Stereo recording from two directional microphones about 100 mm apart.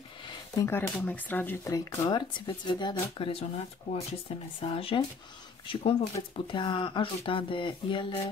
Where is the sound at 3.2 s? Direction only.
75° left (ahead or behind).